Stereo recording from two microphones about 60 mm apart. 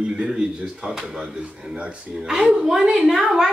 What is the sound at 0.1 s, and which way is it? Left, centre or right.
A woman's voice, centre.